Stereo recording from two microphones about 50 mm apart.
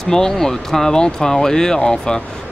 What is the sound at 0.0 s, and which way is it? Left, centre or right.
Speech, centre.